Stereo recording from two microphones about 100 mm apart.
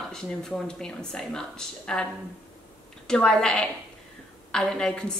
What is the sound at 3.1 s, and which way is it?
A woman's voice, 5° left (ahead or behind).